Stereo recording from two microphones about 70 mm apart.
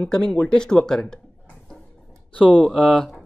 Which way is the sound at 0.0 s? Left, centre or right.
Centre.